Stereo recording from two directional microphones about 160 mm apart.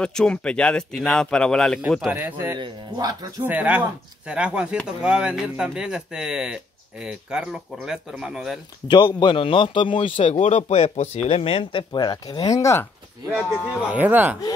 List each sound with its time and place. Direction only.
0.0 s speech: 5° left (ahead or behind); by 2.6 s 15° right (ahead or behind)
2.6 s speech: 25° right (ahead or behind)
3.4 s speech: 10° right (ahead or behind)
8.8 s speech: 30° left (ahead or behind)
13.7 s speech: 10° right (ahead or behind)